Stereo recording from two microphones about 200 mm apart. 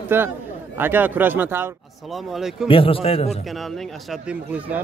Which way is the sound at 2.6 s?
25° left (ahead or behind).